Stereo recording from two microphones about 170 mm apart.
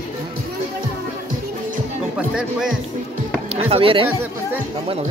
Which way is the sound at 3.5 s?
35° right (ahead or behind).